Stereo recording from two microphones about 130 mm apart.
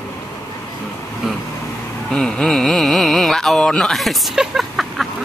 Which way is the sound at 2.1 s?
5° left (ahead or behind).